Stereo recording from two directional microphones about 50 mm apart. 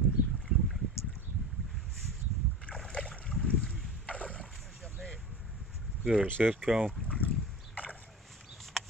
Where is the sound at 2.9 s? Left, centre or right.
Centre.